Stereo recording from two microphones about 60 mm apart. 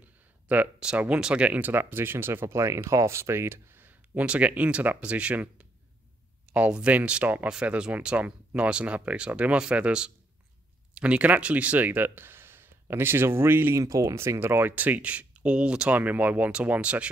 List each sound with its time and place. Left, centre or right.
0.7 s speech: centre
1.6 s speech: right
13.7 s speech: right
14.1 s speech: right; by 17.1 s centre